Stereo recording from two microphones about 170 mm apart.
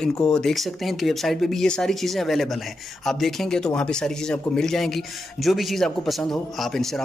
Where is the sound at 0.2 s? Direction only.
5° left (ahead or behind).